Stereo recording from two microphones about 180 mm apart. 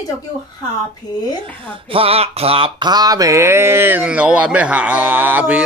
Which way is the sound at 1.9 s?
30° right (ahead or behind).